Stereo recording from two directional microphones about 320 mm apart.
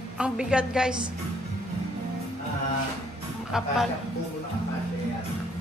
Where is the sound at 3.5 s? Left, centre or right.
Centre.